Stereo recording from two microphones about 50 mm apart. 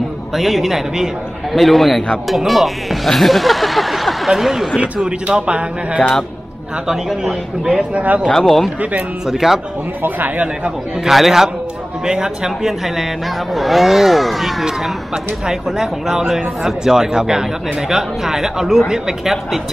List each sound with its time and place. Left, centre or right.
0.4 s a man's voice: centre
4.7 s speech: centre
7.9 s speech: right
8.3 s a man's voice: centre
9.3 s speech: centre
10.0 s speech: right
11.1 s a man's voice: centre
15.4 s speech: centre